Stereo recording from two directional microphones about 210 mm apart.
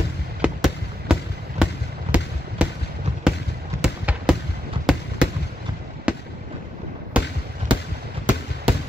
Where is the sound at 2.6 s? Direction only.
5° right (ahead or behind).